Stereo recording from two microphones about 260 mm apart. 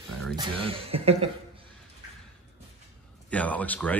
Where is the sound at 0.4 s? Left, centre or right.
Right.